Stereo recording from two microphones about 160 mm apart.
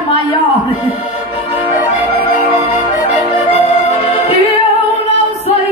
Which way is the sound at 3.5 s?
40° left (ahead or behind).